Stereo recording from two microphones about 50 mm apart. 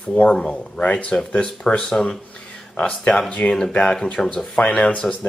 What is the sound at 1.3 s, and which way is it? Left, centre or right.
Speech, left.